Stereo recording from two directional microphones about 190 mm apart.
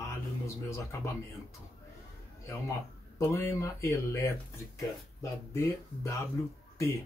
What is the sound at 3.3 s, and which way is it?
Speech, 15° left (ahead or behind).